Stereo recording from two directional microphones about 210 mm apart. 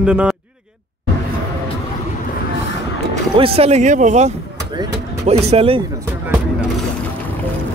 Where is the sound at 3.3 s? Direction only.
25° right (ahead or behind).